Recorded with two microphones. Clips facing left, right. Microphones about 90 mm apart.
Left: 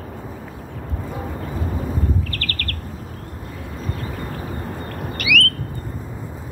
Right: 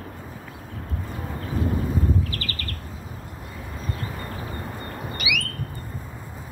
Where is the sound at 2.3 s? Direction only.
65° left (ahead or behind).